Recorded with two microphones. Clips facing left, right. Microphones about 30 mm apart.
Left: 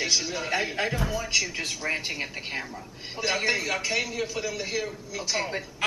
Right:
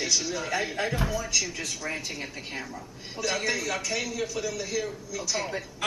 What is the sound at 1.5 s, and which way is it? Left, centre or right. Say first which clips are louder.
Speech: left 4 dB; left.